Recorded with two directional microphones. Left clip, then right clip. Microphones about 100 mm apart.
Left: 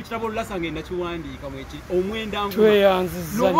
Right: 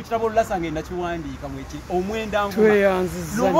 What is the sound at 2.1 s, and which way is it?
Music, 30° right (ahead or behind).